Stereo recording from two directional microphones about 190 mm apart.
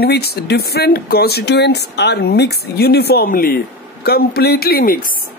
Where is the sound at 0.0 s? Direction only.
55° left (ahead or behind).